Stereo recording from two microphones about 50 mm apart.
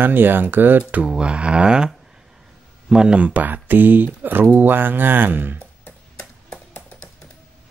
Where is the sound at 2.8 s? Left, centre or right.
Centre.